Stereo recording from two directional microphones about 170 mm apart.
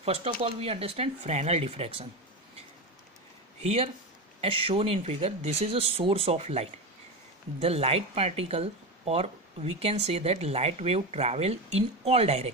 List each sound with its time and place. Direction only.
0.0 s speech: 35° right (ahead or behind)
3.6 s speech: 35° right (ahead or behind)